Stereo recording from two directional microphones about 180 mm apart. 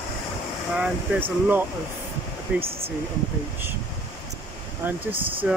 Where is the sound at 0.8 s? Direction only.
10° right (ahead or behind).